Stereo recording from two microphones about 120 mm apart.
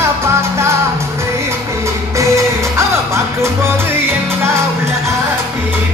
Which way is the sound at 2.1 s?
25° right (ahead or behind).